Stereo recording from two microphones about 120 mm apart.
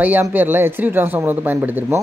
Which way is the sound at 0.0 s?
15° right (ahead or behind).